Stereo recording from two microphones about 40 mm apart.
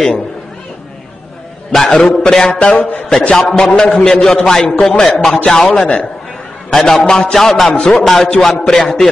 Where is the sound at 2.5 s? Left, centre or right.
Left.